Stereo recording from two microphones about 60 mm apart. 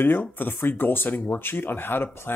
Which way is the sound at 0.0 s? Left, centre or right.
Left.